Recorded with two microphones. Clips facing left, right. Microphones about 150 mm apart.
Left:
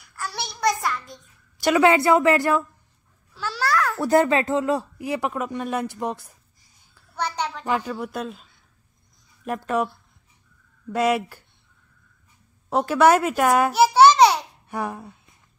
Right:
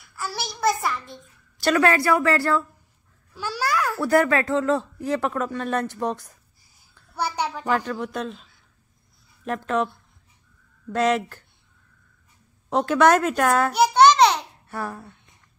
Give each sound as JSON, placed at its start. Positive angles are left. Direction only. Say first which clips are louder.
{"t": 0.0, "sound": "child singing", "louder": "right 1 dB", "side_deg": -5}
{"t": 1.6, "sound": "a man's voice", "louder": "left 2 dB", "side_deg": 15}
{"t": 3.3, "sound": "babbling", "louder": "left 1 dB", "side_deg": -10}
{"t": 4.0, "sound": "a man's voice", "louder": "left 1 dB", "side_deg": 20}
{"t": 7.2, "sound": "a sound", "louder": "right 1 dB", "side_deg": -10}
{"t": 7.6, "sound": "a man's voice", "louder": "right 1 dB", "side_deg": 10}
{"t": 12.6, "sound": "speech", "louder": "left 1 dB", "side_deg": 5}
{"t": 13.7, "sound": "babbling", "louder": "left 1 dB", "side_deg": 5}